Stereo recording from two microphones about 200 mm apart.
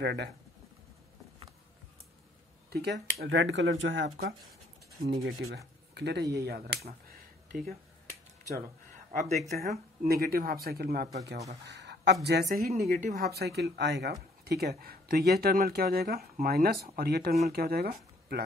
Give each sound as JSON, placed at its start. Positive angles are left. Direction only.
{"t": 0.0, "sound": "speech", "side_deg": -55}
{"t": 2.7, "sound": "speech", "side_deg": -55}
{"t": 5.2, "sound": "speech", "side_deg": -55}
{"t": 9.5, "sound": "speech", "side_deg": -50}